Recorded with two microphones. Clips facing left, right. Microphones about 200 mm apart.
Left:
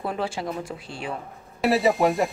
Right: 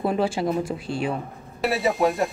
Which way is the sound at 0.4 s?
20° right (ahead or behind).